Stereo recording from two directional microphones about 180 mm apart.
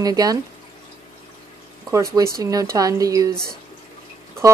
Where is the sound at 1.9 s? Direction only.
15° right (ahead or behind).